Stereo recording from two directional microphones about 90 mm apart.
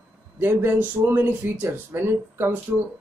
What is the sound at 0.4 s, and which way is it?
Speech, 25° right (ahead or behind).